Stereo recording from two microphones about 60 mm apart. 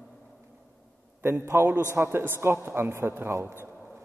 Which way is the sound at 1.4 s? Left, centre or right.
Right.